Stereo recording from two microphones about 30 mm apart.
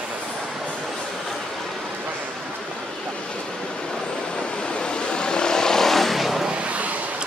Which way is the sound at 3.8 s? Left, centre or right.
Left.